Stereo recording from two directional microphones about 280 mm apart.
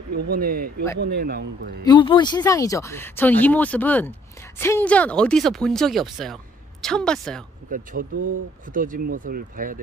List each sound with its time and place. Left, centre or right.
0.3 s speech: right
1.9 s speech: centre
7.7 s speech: right